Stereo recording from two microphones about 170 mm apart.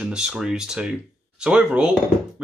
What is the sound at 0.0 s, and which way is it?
Speech, 5° right (ahead or behind).